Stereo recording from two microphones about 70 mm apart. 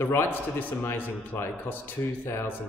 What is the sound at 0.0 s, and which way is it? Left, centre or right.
A man's voice, left.